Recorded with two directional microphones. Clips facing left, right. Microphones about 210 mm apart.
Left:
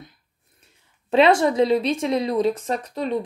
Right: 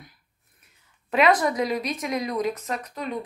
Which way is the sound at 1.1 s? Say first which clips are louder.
Left 4 dB; 30° left (ahead or behind).